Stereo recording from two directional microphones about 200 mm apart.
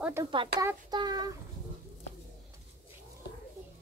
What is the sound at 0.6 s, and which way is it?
Speech, 20° right (ahead or behind).